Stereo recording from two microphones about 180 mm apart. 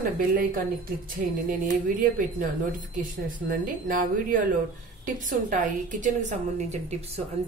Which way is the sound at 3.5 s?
50° right (ahead or behind).